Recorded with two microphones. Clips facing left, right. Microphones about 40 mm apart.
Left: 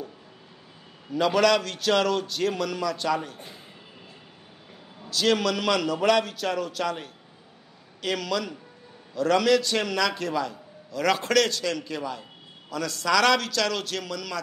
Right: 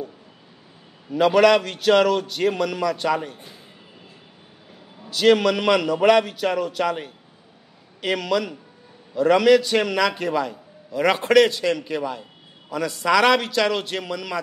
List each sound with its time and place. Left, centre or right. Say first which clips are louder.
1.1 s a man's voice: right 5 dB; centre
5.1 s a man's voice: right 6 dB; centre